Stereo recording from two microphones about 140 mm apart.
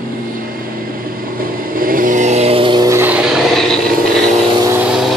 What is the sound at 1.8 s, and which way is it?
Vehicle, 85° right.